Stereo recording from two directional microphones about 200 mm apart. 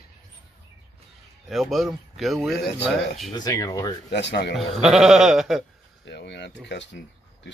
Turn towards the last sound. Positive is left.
turn(degrees=65)  # may be behind; listen again after turning